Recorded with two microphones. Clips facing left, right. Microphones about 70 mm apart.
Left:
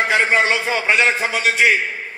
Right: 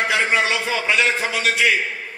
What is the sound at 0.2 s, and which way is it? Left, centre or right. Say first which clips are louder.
Speech: left 3 dB; left.